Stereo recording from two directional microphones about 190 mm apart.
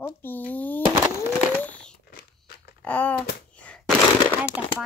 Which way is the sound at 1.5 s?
5° left (ahead or behind).